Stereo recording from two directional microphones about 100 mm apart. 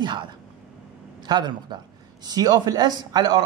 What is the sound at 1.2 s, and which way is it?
A woman's voice, 45° right (ahead or behind).